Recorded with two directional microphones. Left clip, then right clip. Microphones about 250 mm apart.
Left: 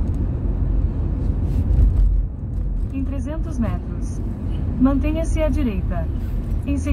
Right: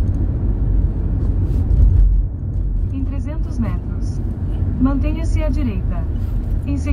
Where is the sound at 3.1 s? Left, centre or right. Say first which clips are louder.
Left 1 dB; right.